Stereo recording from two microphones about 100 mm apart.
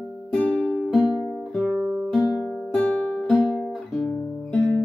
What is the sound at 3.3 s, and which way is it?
Music, 45° left (ahead or behind).